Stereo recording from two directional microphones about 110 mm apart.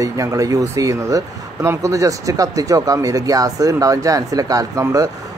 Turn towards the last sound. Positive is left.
turn(degrees=-30)  # may be behind; listen again after turning